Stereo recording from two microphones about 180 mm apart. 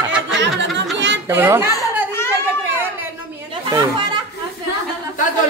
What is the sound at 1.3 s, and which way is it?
Speech, 10° right (ahead or behind).